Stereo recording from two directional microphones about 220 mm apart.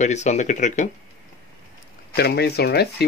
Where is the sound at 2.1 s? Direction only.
45° left (ahead or behind).